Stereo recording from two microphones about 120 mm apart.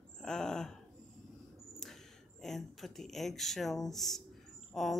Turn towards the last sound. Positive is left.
turn(degrees=0)  # may be behind; listen again after turning